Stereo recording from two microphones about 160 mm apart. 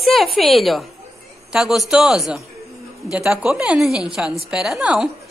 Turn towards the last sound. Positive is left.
turn(degrees=-5)  # may be behind; listen again after turning